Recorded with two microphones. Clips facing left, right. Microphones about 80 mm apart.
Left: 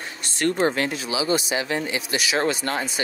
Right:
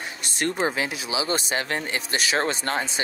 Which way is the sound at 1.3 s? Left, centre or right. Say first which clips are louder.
Left 3 dB; right.